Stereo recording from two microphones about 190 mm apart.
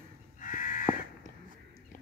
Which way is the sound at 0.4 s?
45° left (ahead or behind).